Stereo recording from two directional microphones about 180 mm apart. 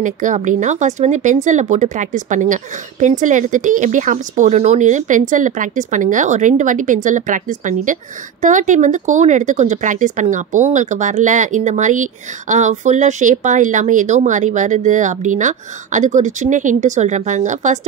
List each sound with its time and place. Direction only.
0.0 s a woman's voice: 45° right (ahead or behind)